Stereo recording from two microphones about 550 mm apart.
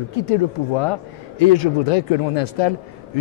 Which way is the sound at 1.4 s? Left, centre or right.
Left.